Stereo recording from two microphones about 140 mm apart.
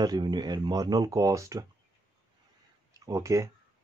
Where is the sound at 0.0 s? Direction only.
30° right (ahead or behind).